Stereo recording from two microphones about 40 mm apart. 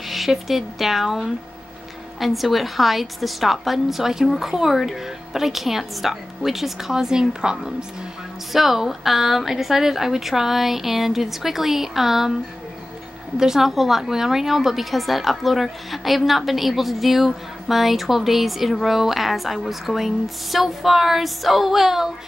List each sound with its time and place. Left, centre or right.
0.1 s a woman's voice: centre
8.5 s a woman's voice: centre
13.4 s a woman's voice: centre